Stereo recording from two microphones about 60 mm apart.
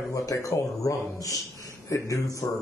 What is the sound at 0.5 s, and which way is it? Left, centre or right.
A man's voice, left.